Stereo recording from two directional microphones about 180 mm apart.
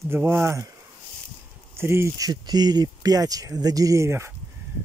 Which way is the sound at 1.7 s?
15° right (ahead or behind).